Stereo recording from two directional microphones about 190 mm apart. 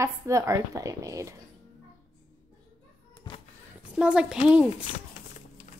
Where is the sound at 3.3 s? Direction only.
20° left (ahead or behind).